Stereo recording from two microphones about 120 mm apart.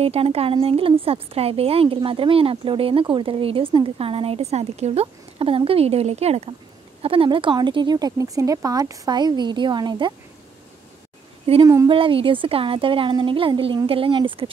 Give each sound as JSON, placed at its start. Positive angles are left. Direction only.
{"t": 0.0, "sound": "speech", "side_deg": -55}
{"t": 7.0, "sound": "speech", "side_deg": -50}
{"t": 11.6, "sound": "speech", "side_deg": -25}
{"t": 11.9, "sound": "speech", "side_deg": -50}